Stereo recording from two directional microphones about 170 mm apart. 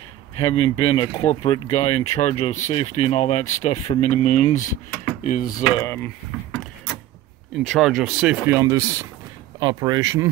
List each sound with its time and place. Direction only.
0.4 s speech: 35° left (ahead or behind); by 5.5 s 50° left (ahead or behind)
5.8 s speech: 15° left (ahead or behind)
7.6 s speech: centre (ahead or behind)
8.5 s speech: 15° right (ahead or behind)